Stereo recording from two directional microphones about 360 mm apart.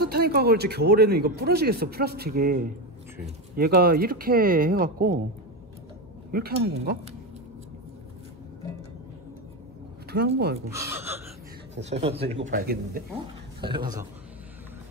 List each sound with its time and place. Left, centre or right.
0.0 s speech: right
6.3 s speech: right
10.1 s speech: right
10.7 s speech: centre
11.7 s speech: centre
13.6 s speech: centre